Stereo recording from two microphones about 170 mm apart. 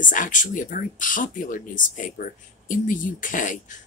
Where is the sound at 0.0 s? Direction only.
50° left (ahead or behind).